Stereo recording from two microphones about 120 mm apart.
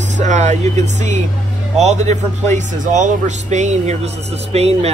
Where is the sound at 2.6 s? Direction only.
90° right.